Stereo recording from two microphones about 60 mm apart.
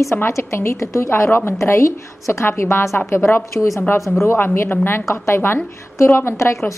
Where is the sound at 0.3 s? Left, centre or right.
Left.